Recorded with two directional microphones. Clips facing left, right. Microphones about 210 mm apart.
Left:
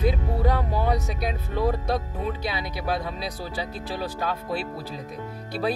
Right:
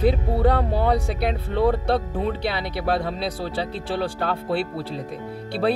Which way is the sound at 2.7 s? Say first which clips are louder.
Right 5 dB; 65° right (ahead or behind).